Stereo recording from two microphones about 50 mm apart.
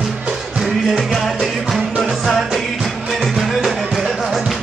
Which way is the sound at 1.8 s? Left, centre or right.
Centre.